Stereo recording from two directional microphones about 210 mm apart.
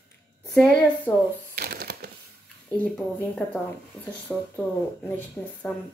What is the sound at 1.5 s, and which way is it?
Crushing, 50° right (ahead or behind).